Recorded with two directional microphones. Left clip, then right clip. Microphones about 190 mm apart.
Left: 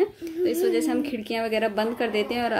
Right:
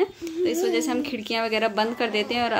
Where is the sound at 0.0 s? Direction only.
Centre (ahead or behind).